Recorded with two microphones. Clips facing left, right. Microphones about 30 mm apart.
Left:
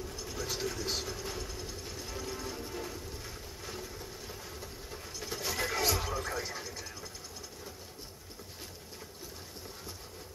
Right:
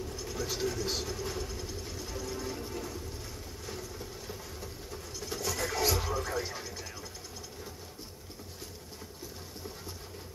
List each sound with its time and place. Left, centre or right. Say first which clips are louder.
0.1 s vehicle: right 2 dB; centre
4.3 s a sound: right 2 dB; centre
5.4 s neigh: even; left
5.7 s music: right 2 dB; centre